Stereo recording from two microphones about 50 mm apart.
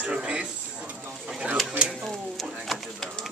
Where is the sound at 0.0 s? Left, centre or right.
Right.